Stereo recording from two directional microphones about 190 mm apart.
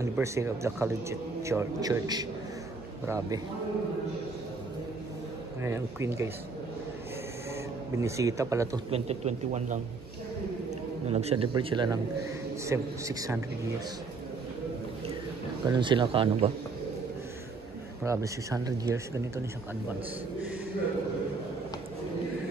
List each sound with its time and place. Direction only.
0.0 s a man's voice: 15° right (ahead or behind)
5.6 s a man's voice: 15° right (ahead or behind)
8.0 s a man's voice: 15° right (ahead or behind)
8.9 s a man's voice: 35° right (ahead or behind)
11.1 s a man's voice: 35° right (ahead or behind); by 13.4 s 15° right (ahead or behind)
15.6 s speech: 25° right (ahead or behind)
18.0 s a man's voice: 15° right (ahead or behind)